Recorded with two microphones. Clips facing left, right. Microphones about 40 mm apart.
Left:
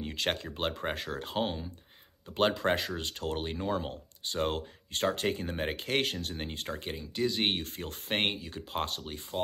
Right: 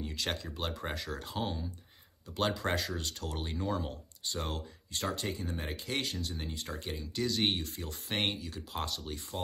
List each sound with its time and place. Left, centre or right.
0.0 s speech: left
7.0 s speech: left
7.4 s speech: left